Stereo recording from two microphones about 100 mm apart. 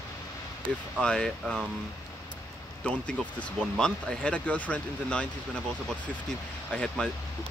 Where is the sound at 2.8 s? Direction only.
10° left (ahead or behind).